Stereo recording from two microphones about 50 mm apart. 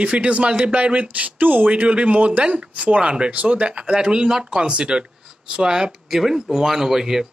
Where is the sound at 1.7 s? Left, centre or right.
Right.